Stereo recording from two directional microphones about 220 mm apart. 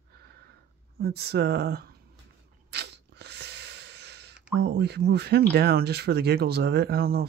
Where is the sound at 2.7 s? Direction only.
50° right (ahead or behind).